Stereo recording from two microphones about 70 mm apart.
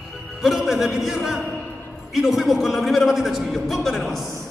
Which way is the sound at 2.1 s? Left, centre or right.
Centre.